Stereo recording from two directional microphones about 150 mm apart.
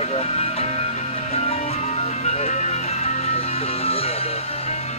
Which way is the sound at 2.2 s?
50° left (ahead or behind).